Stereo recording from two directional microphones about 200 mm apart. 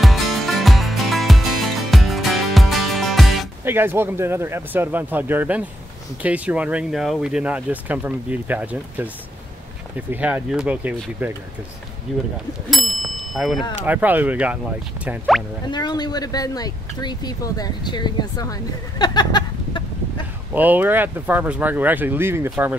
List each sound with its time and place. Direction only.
0.0 s music: centre (ahead or behind)
3.6 s speech: 10° right (ahead or behind)
12.1 s music: centre (ahead or behind)
12.6 s speech: centre (ahead or behind)
15.0 s music: centre (ahead or behind)
15.7 s speech: 20° left (ahead or behind)
20.5 s speech: 10° right (ahead or behind)